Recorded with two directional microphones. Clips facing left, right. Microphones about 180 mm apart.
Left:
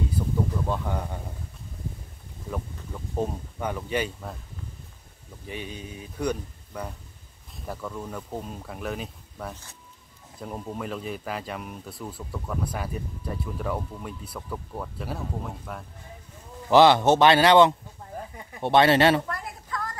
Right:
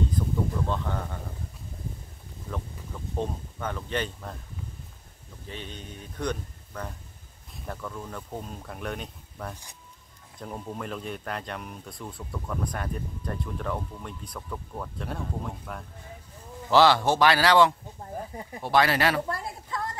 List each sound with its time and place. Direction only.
0.7 s speech: 10° left (ahead or behind)
3.2 s speech: 10° left (ahead or behind)
5.5 s speech: 10° left (ahead or behind)
16.7 s a man's voice: 20° left (ahead or behind)
18.3 s speech: 35° right (ahead or behind)
18.6 s a man's voice: 25° left (ahead or behind)
19.2 s a sound: 30° right (ahead or behind)